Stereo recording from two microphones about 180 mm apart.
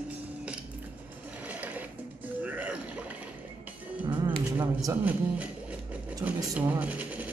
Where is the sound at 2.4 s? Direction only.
10° right (ahead or behind).